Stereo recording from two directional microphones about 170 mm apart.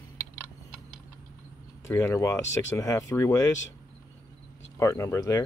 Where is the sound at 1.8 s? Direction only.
15° left (ahead or behind).